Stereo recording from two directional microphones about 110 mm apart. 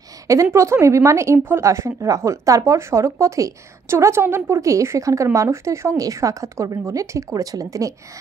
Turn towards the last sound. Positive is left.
turn(degrees=-30)  # may be behind; listen again after turning